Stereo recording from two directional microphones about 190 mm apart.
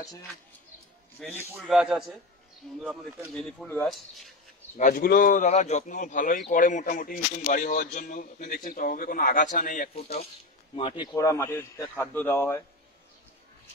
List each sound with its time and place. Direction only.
1.5 s speech: centre (ahead or behind)
3.6 s a man's voice: 10° left (ahead or behind)
4.7 s speech: 45° left (ahead or behind)
10.8 s a man's voice: 25° left (ahead or behind)